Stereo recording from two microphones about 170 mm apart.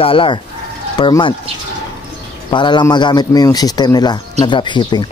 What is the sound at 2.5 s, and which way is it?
Speech, 25° left (ahead or behind).